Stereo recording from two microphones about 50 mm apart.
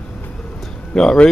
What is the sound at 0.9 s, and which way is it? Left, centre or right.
Speech, centre.